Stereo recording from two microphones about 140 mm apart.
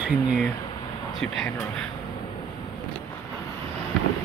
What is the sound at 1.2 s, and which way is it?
Speech, 5° left (ahead or behind).